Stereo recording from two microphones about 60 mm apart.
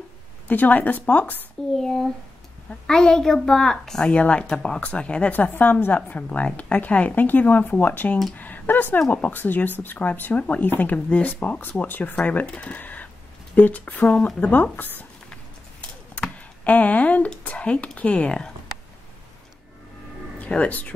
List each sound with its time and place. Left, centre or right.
0.5 s a woman's voice: left
1.7 s a child's voice: centre
4.1 s a woman's voice: centre
14.5 s speech: left
16.2 s a sound: left
17.4 s a woman's voice: left
20.3 s speech: left